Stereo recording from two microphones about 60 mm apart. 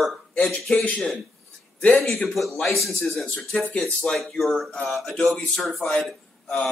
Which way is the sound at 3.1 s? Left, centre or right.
Centre.